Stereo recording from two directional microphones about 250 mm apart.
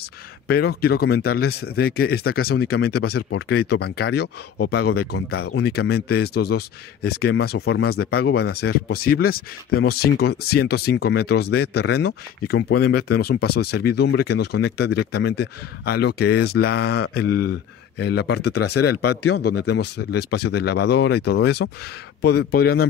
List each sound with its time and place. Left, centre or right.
0.5 s speech: left
17.2 s speech: left
17.9 s speech: left
18.6 s speech: left
19.2 s speech: left